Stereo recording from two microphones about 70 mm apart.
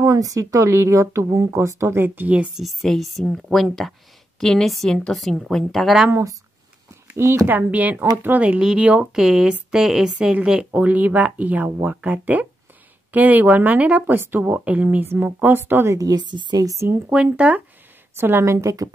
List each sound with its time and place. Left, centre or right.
0.0 s speech: right
2.0 s speech: right
2.5 s a woman's voice: centre
7.4 s speech: right
8.5 s speech: centre; by 16.0 s right
16.0 s a woman's voice: right
16.6 s speech: right
17.1 s speech: centre
18.1 s speech: right